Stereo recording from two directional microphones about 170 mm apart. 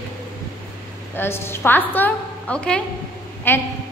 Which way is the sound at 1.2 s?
15° left (ahead or behind).